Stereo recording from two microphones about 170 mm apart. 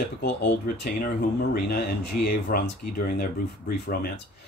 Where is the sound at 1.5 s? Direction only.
65° left (ahead or behind).